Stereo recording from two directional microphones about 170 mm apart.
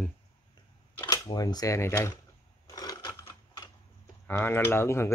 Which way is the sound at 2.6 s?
20° left (ahead or behind).